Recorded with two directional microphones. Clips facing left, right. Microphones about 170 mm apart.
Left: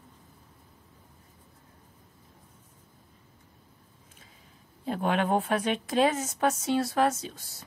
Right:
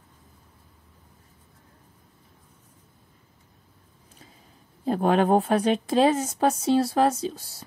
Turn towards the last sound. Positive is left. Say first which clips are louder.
# right 10 dB
turn(degrees=-30)  # may be behind; listen again after turning